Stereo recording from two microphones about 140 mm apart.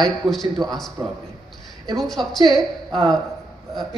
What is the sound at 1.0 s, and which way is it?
Speech, 30° right (ahead or behind).